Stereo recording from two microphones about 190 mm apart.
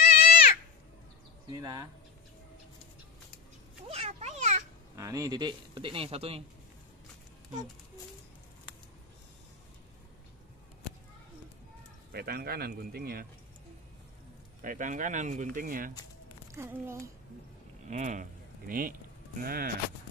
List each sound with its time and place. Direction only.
0.0 s a sound: 50° left (ahead or behind)
1.5 s speech: 20° right (ahead or behind)
3.9 s a sound: 35° right (ahead or behind)
4.9 s speech: 15° right (ahead or behind)
12.1 s speech: 55° right (ahead or behind)
14.6 s speech: 45° right (ahead or behind)
16.5 s speech: 10° right (ahead or behind)
17.8 s speech: 40° right (ahead or behind)